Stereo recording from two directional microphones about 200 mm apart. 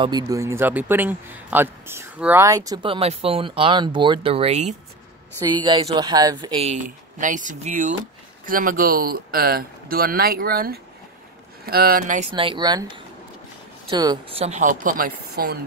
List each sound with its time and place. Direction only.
0.0 s a man's voice: 20° right (ahead or behind); by 4.7 s 35° right (ahead or behind)
5.4 s a man's voice: 20° right (ahead or behind); by 12.2 s 50° right (ahead or behind)
12.2 s a man's voice: 25° right (ahead or behind)
14.4 s speech: 35° right (ahead or behind)